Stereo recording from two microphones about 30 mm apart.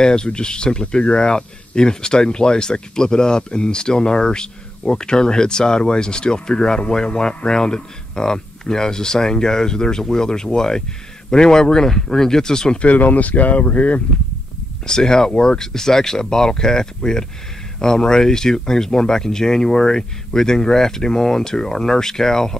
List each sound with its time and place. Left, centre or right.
0.0 s speech: left
12.7 s speech: left
13.0 s speech: left
14.9 s speech: left